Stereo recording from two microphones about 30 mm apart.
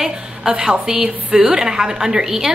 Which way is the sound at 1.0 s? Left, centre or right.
Right.